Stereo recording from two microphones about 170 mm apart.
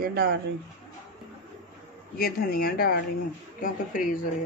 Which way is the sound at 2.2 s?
60° left (ahead or behind).